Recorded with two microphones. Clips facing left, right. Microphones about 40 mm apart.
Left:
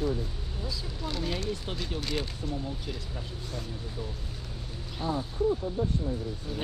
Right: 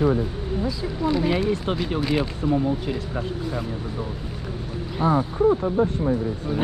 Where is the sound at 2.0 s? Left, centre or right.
Right.